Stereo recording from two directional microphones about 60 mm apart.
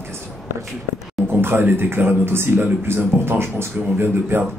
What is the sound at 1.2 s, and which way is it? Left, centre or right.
Speech, right.